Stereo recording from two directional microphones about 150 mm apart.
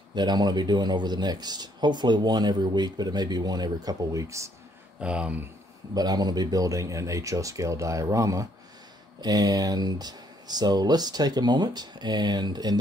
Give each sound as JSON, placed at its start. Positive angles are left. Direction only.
{"t": 0.1, "sound": "speech", "side_deg": -30}
{"t": 5.0, "sound": "speech", "side_deg": -10}
{"t": 5.9, "sound": "speech", "side_deg": -25}